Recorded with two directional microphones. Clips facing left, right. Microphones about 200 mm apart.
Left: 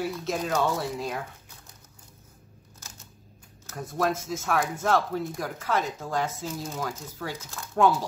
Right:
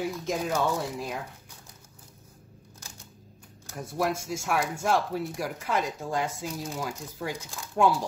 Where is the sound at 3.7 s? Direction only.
10° right (ahead or behind).